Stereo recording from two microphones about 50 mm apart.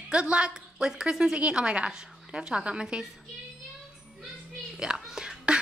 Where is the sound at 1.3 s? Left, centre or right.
Right.